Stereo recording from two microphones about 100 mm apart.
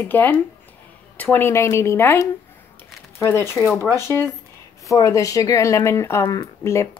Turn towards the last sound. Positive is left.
turn(degrees=30)  # may be behind; listen again after turning